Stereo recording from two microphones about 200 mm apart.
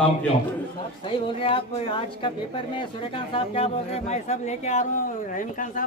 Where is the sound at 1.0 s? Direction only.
25° left (ahead or behind).